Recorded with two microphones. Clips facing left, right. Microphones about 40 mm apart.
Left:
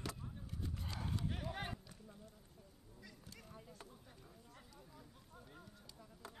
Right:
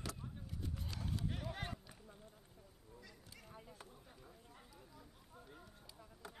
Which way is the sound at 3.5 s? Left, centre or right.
Centre.